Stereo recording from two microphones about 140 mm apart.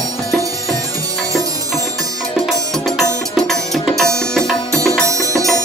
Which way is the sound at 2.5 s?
Centre (ahead or behind).